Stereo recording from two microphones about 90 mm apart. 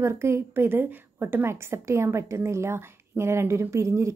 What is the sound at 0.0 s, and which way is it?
A woman's voice, 30° right (ahead or behind).